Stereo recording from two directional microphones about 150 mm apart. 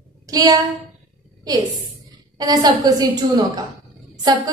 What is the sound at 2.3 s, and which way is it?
A woman's voice, 25° right (ahead or behind).